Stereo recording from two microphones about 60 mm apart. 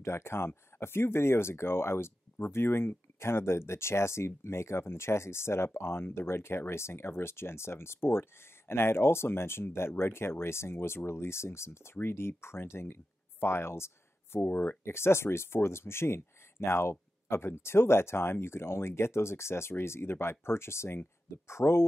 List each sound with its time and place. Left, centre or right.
0.0 s speech: left